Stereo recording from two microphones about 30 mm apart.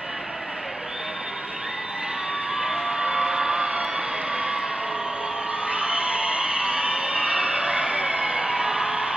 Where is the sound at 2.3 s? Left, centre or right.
Right.